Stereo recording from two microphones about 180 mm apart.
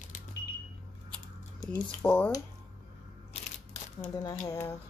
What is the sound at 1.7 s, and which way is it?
Speech, 10° left (ahead or behind).